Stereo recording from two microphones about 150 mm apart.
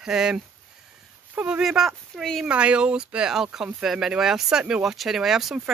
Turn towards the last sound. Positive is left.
turn(degrees=0)  # may be behind; listen again after turning